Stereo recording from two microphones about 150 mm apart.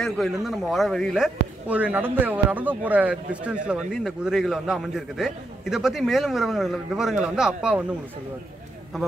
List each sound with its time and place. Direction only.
0.0 s a man's voice: centre (ahead or behind)